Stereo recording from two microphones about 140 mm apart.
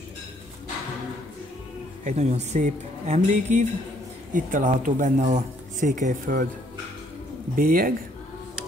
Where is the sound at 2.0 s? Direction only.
55° right (ahead or behind); by 6.5 s 70° right (ahead or behind).